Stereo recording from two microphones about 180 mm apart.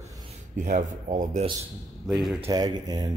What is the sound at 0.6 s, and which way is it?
Speech, 40° right (ahead or behind).